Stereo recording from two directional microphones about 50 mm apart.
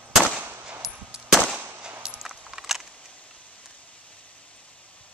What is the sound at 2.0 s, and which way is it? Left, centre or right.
Coin, centre.